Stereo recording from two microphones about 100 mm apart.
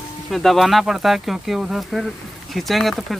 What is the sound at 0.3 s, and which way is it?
Speech, centre (ahead or behind).